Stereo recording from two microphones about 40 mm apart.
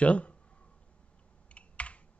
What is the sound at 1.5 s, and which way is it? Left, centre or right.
Computer keyboard, left.